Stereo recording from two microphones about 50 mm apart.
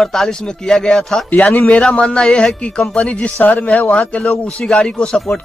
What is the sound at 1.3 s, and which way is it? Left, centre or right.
Speech, left.